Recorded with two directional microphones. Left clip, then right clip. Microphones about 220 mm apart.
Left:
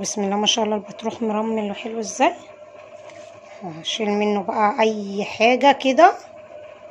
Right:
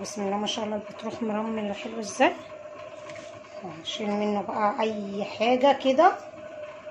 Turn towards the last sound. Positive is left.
turn(degrees=30)  # may be behind; listen again after turning